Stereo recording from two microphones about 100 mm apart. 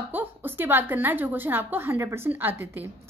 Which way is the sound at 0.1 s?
20° right (ahead or behind).